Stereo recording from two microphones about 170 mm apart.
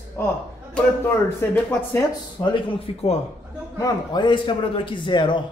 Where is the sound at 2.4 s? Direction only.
30° left (ahead or behind).